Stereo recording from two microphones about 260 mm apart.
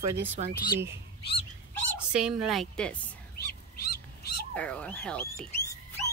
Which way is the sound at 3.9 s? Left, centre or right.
Left.